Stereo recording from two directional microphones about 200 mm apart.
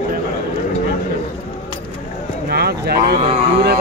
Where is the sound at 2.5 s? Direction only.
50° right (ahead or behind).